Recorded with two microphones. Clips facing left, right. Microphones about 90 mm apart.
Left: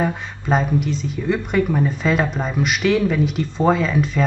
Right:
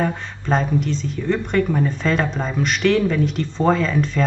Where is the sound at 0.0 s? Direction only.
5° left (ahead or behind).